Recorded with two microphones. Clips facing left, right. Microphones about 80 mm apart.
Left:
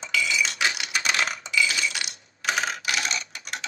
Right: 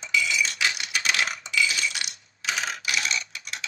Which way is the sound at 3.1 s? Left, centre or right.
Left.